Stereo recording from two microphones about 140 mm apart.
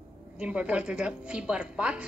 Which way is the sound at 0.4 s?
5° right (ahead or behind).